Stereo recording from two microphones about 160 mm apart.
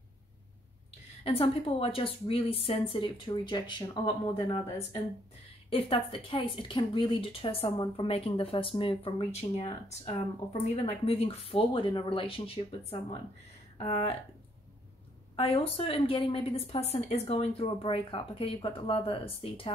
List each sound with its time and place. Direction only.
1.2 s speech: 35° left (ahead or behind)
13.7 s speech: 40° left (ahead or behind)
15.3 s speech: 35° left (ahead or behind)